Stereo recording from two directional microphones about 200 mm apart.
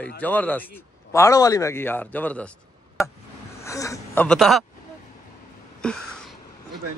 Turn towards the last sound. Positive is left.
turn(degrees=5)  # may be behind; listen again after turning